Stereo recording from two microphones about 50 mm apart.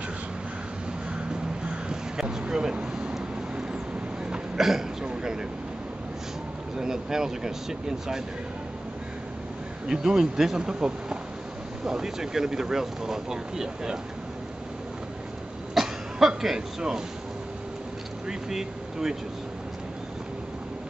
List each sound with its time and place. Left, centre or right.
1.9 s vehicle: centre
2.4 s a sound: centre
4.6 s speech: centre
5.0 s a sound: centre
6.8 s speech: centre
9.8 s speech: centre
15.7 s cough: centre
18.2 s speech: centre